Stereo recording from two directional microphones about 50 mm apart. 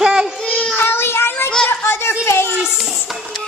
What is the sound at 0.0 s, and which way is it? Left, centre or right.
Child singing, centre.